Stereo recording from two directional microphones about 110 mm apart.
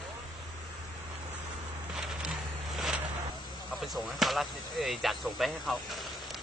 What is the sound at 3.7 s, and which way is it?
Speech, centre (ahead or behind).